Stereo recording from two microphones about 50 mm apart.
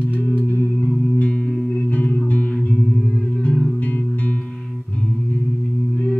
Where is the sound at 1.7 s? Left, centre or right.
Left.